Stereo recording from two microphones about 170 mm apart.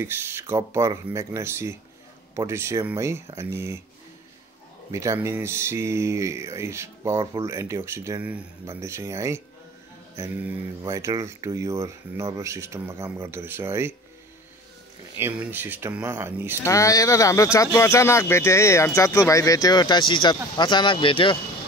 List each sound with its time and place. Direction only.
0.0 s speech: 15° right (ahead or behind)
4.9 s speech: 15° right (ahead or behind)
15.1 s speech: 10° right (ahead or behind)
16.6 s speech: 20° left (ahead or behind)